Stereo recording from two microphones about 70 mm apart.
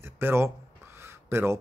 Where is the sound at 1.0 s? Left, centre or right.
Right.